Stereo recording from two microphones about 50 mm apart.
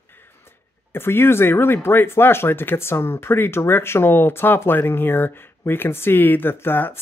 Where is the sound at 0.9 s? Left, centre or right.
Left.